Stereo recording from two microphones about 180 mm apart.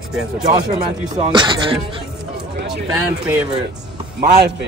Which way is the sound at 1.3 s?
25° right (ahead or behind).